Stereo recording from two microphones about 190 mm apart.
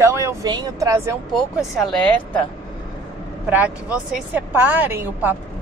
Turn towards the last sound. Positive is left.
turn(degrees=-10)  # may be behind; listen again after turning